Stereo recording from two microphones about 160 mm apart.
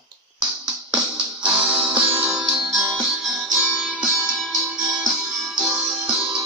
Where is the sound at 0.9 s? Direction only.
10° right (ahead or behind).